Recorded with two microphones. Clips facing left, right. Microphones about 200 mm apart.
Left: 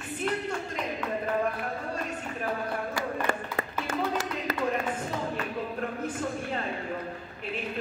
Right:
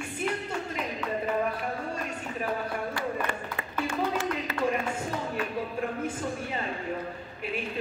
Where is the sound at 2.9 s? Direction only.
45° left (ahead or behind).